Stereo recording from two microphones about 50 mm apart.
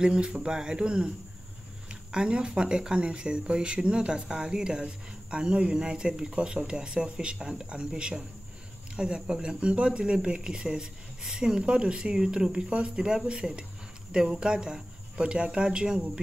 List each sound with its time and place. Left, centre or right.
0.0 s speech: centre
2.1 s speech: centre